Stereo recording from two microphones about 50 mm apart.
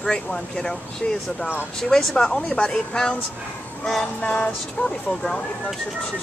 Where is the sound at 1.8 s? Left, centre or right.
Centre.